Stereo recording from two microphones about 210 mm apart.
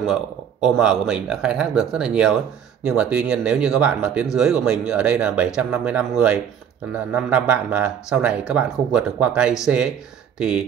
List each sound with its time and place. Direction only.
0.0 s speech: centre (ahead or behind)